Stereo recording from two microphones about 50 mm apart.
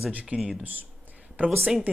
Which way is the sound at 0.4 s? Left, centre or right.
Centre.